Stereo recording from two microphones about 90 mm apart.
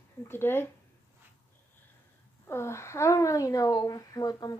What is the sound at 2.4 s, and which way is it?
Speech, 30° left (ahead or behind).